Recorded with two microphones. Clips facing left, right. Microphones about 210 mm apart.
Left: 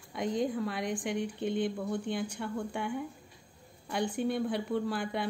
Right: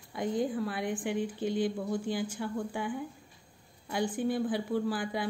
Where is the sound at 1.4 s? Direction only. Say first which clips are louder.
Right 1 dB; 60° left (ahead or behind).